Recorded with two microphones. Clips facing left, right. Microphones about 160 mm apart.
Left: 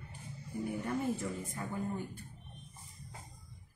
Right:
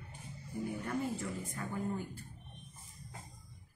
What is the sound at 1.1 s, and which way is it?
Speech, 20° left (ahead or behind).